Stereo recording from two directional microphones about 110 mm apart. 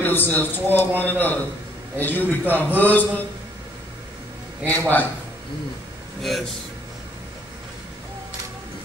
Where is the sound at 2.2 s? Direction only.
15° right (ahead or behind).